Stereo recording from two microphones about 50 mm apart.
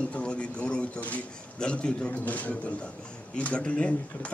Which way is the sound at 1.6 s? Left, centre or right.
Centre.